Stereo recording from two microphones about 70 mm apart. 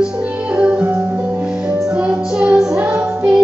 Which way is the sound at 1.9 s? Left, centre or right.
Centre.